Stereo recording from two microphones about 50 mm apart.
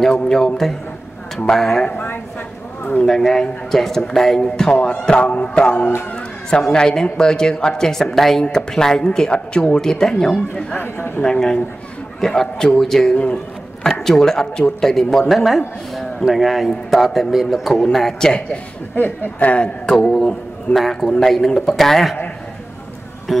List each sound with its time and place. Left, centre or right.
0.0 s a man's voice: centre
1.5 s a man's voice: centre
1.9 s a sound: left
3.1 s a man's voice: centre
10.3 s speech: left
10.8 s speech: left
11.2 s a man's voice: centre
18.9 s a woman's voice: left
19.9 s a man's voice: centre
20.7 s a man's voice: centre